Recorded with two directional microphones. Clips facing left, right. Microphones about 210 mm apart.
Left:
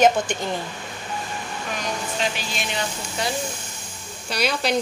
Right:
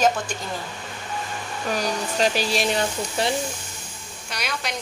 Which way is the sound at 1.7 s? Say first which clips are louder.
Right 4 dB; 35° right (ahead or behind).